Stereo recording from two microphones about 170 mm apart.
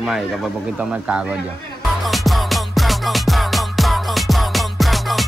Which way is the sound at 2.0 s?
Centre (ahead or behind).